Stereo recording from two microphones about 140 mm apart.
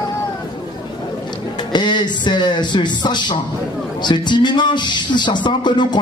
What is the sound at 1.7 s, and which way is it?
Speech, 30° left (ahead or behind).